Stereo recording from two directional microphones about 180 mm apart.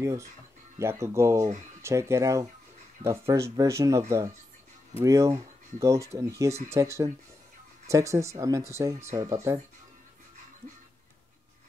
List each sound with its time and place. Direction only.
0.0 s speech: 15° right (ahead or behind)
5.0 s speech: 15° right (ahead or behind)